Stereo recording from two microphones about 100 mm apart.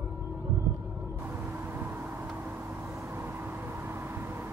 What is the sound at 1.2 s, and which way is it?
Vehicle, 20° right (ahead or behind).